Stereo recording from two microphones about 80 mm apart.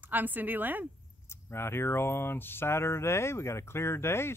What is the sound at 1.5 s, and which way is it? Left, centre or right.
Speech, left.